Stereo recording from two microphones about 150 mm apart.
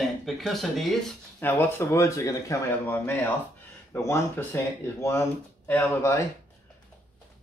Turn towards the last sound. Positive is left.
turn(degrees=20)  # may be behind; listen again after turning